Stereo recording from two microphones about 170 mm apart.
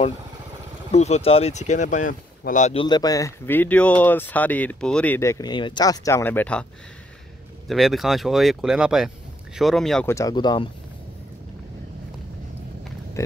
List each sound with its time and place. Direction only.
0.9 s speech: 40° left (ahead or behind)
2.7 s speech: 30° left (ahead or behind); by 6.6 s 10° left (ahead or behind)
7.6 s speech: centre (ahead or behind)
10.0 s speech: 20° left (ahead or behind)